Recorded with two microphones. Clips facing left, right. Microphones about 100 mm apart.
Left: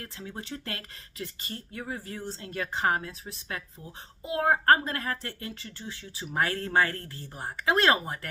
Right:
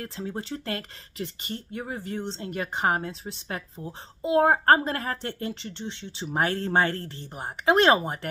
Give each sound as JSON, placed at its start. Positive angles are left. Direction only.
{"t": 0.0, "sound": "speech", "side_deg": -30}